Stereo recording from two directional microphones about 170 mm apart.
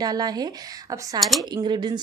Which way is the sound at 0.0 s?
25° right (ahead or behind).